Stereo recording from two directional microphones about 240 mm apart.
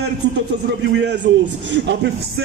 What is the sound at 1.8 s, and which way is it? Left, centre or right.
Speech, right.